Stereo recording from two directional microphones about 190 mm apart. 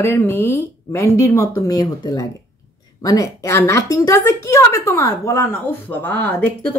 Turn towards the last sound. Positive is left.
turn(degrees=10)  # may be behind; listen again after turning